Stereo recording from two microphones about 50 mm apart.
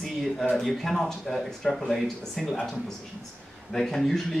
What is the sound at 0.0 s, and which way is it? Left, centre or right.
Speech, centre.